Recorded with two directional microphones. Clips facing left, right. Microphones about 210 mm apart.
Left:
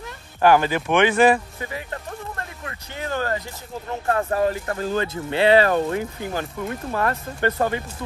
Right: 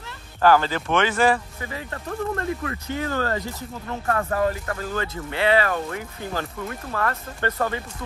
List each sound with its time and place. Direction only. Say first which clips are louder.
0.4 s speech: left 1 dB; 15° left (ahead or behind)